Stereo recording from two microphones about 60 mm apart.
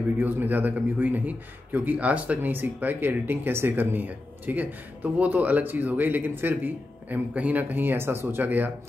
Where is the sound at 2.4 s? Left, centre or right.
Right.